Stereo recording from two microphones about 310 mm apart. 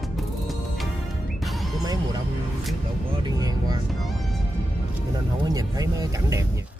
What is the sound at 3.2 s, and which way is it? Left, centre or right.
Speech, centre.